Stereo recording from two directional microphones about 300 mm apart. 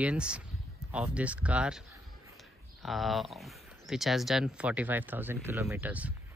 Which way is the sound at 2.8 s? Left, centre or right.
Centre.